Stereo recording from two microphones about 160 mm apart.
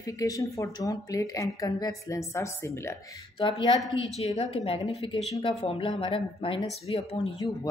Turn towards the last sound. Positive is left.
turn(degrees=30)  # may be behind; listen again after turning